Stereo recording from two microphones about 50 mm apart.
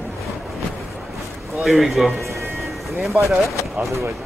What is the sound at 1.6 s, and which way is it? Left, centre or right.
Speech, centre.